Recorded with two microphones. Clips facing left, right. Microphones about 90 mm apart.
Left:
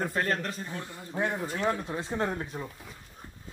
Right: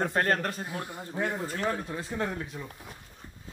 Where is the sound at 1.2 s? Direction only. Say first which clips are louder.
Left 1 dB; 20° left (ahead or behind).